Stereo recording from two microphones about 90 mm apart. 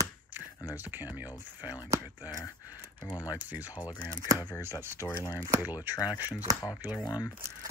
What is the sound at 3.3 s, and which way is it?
Speech, 20° right (ahead or behind).